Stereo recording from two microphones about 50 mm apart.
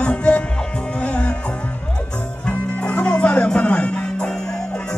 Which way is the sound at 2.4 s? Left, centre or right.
Left.